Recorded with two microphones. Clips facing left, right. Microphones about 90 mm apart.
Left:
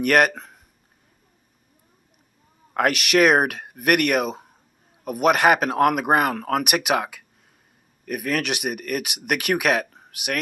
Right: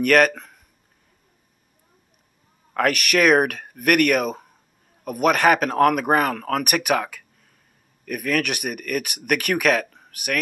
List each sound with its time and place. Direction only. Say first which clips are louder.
0.0 s speech: right 1 dB; 20° left (ahead or behind)
2.7 s speech: left 1 dB; 20° left (ahead or behind)